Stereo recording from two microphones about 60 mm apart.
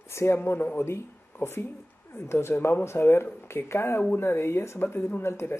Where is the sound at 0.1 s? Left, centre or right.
Left.